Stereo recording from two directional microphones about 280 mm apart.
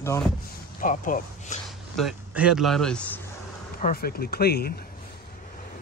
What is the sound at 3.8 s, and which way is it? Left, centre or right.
Speech, left.